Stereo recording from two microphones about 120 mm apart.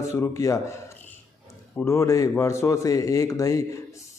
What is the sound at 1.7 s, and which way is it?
Speech, 25° left (ahead or behind).